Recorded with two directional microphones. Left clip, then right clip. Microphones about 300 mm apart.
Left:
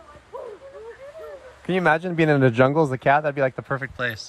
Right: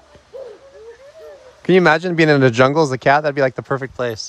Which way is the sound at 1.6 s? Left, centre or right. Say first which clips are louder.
Right 7 dB; right.